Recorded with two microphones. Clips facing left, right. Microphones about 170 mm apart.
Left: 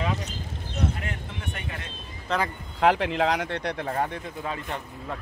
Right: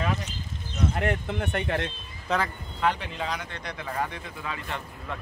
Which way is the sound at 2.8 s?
90° left.